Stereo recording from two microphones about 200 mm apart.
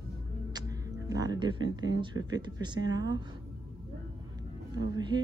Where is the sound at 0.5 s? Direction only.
20° right (ahead or behind).